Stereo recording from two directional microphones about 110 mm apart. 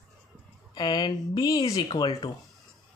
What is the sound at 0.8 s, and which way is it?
Speech, 40° left (ahead or behind).